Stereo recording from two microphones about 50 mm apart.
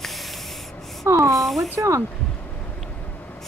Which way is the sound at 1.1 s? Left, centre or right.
Right.